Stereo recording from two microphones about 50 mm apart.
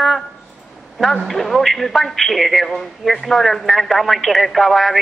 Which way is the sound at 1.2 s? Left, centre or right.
Centre.